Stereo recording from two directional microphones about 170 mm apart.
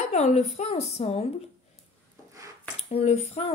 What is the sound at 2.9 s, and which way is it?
Speech, 35° left (ahead or behind).